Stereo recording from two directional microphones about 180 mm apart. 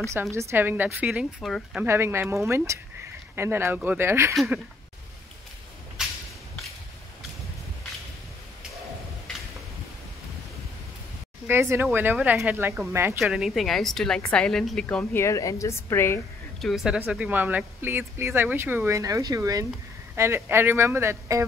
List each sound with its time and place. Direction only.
0.0 s speech: 15° right (ahead or behind)
1.8 s speech: 15° right (ahead or behind)
4.3 s a woman's voice: centre (ahead or behind)
6.0 s a sound: 5° right (ahead or behind)
11.4 s speech: 15° right (ahead or behind)
13.2 s a woman's voice: centre (ahead or behind); by 16.2 s 15° left (ahead or behind)
16.6 s speech: centre (ahead or behind)